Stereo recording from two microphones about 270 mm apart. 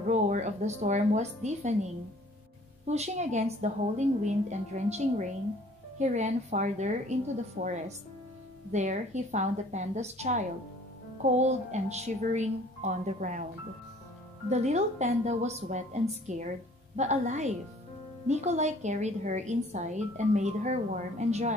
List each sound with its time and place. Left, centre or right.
0.1 s a woman's voice: right
2.9 s a woman's voice: right
8.7 s a woman's voice: right
14.5 s a woman's voice: right